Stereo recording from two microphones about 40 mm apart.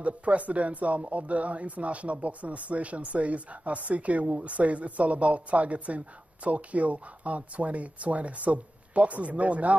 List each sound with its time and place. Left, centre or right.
0.0 s speech: right